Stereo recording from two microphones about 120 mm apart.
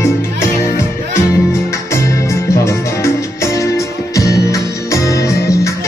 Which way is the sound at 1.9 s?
25° left (ahead or behind).